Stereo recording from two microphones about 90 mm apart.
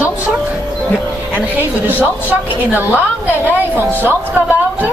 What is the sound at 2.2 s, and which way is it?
Speech, 15° right (ahead or behind).